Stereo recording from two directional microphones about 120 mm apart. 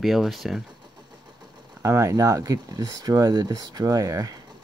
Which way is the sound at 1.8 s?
25° right (ahead or behind).